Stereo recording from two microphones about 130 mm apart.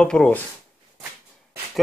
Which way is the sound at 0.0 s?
10° left (ahead or behind).